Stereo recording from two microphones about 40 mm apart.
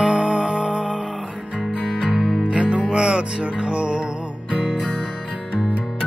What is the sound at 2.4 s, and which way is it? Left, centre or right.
Music, right.